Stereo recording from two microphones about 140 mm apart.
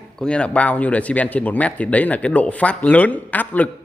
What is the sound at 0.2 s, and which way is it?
Speech, 10° left (ahead or behind).